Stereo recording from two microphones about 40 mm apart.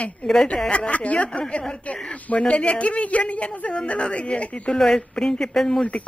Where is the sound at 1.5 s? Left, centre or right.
Left.